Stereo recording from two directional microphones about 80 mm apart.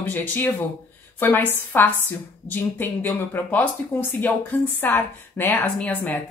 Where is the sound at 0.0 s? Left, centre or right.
Left.